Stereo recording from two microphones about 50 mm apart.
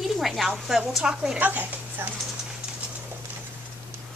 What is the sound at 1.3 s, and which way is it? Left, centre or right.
Speech, right.